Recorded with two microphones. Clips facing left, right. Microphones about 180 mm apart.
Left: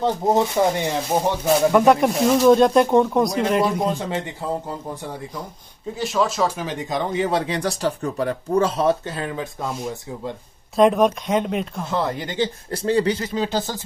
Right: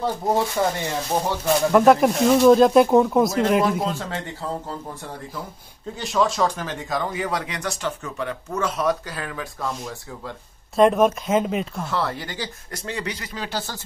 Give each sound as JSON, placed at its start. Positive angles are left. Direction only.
{"t": 0.0, "sound": "speech", "side_deg": 20}
{"t": 1.7, "sound": "speech", "side_deg": 0}
{"t": 4.0, "sound": "speech", "side_deg": 15}
{"t": 5.9, "sound": "speech", "side_deg": 0}
{"t": 10.8, "sound": "speech", "side_deg": 0}
{"t": 11.8, "sound": "speech", "side_deg": 20}